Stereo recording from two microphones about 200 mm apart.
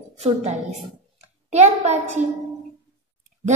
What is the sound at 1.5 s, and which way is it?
Speech, 35° right (ahead or behind).